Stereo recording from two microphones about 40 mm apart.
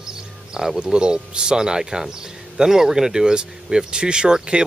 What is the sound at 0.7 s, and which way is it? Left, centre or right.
Speech, right.